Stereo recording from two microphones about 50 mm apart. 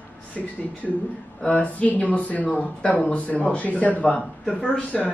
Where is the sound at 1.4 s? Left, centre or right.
Left.